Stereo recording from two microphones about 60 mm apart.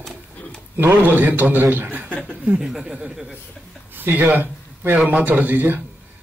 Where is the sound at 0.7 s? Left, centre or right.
Right.